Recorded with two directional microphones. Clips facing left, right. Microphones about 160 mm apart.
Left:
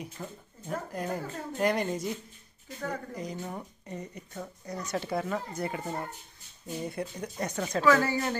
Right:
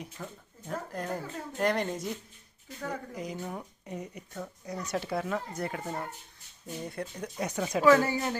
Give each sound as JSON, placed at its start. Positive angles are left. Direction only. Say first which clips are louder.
{"t": 0.0, "sound": "speech", "louder": "left 2 dB", "side_deg": 5}
{"t": 7.8, "sound": "speech", "louder": "right 2 dB", "side_deg": -20}